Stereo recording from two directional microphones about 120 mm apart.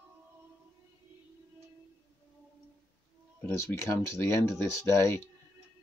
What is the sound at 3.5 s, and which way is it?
Speech, 20° left (ahead or behind).